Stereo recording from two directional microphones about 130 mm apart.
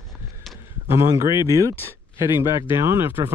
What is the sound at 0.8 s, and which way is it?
Speech, 25° right (ahead or behind).